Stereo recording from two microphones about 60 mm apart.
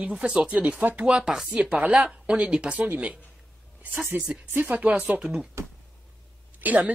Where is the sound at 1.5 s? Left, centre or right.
Centre.